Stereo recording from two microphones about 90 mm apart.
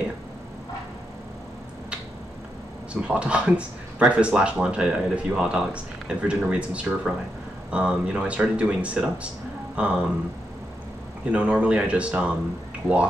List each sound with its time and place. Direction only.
2.9 s speech: 10° right (ahead or behind)
11.3 s speech: 15° right (ahead or behind)